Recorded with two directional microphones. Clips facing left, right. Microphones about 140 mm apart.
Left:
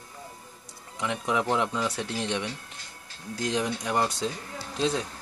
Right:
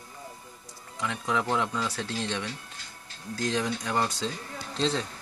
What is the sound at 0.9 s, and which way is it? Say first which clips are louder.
A man's voice: left 2 dB; 20° left (ahead or behind).